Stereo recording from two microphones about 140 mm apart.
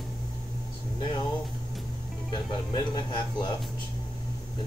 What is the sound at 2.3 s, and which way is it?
Speech, 30° left (ahead or behind).